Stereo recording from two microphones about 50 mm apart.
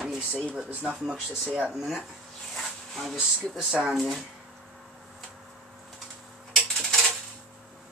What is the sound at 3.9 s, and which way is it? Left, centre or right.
Speech, centre.